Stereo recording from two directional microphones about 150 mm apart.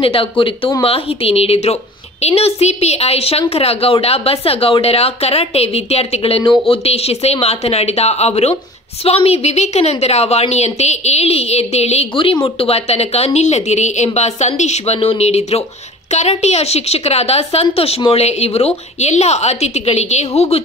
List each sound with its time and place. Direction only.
0.0 s a woman's voice: 35° left (ahead or behind)